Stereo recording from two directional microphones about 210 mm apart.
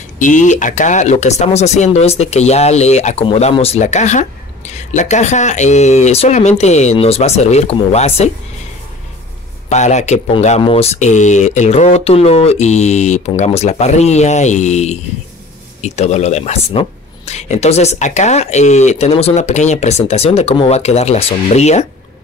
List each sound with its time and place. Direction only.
0.2 s speech: 35° left (ahead or behind)
9.7 s speech: 35° left (ahead or behind)